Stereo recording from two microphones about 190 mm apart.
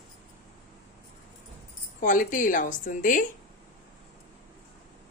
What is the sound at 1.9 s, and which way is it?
A woman's voice, 45° left (ahead or behind).